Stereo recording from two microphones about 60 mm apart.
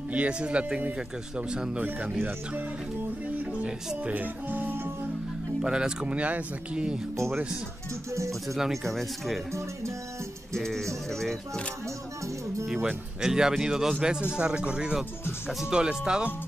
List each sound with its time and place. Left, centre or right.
0.1 s speech: right
3.6 s speech: centre
4.1 s music: right
5.6 s speech: centre
8.1 s speech: right
8.8 s speech: centre
10.5 s speech: centre
12.6 s speech: centre